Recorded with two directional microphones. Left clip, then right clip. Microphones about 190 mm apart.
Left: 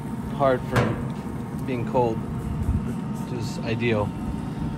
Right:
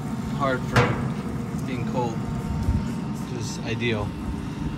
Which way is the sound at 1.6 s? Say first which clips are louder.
Left 5 dB; 15° left (ahead or behind).